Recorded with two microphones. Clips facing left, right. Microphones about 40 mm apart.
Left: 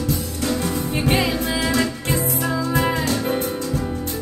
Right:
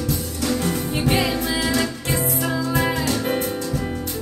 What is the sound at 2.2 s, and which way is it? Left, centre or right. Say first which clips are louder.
Music: right 1 dB; right.